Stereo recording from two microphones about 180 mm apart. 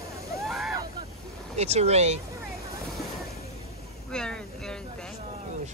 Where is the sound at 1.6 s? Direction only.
35° right (ahead or behind).